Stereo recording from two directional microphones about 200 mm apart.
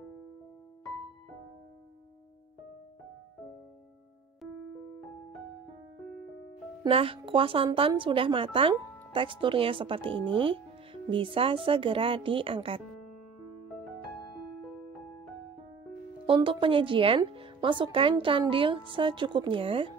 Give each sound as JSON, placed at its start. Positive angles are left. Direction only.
{"t": 6.8, "sound": "speech", "side_deg": -25}
{"t": 16.3, "sound": "speech", "side_deg": -25}